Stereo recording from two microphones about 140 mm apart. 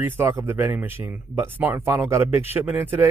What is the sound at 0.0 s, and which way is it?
Speech, 20° right (ahead or behind).